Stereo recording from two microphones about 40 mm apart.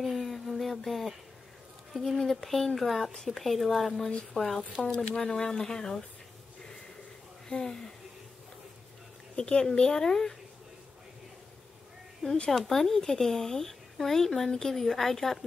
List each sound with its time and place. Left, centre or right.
0.0 s a sound: centre
2.0 s a woman's voice: centre
7.4 s speech: centre
9.3 s speech: left
12.4 s a woman's voice: centre